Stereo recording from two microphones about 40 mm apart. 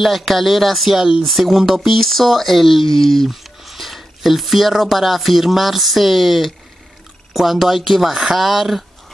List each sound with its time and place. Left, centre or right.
0.0 s speech: centre